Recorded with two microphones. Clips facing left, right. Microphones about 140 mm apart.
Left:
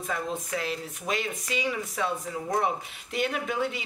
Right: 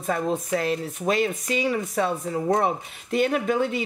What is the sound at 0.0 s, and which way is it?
Speech, 40° right (ahead or behind).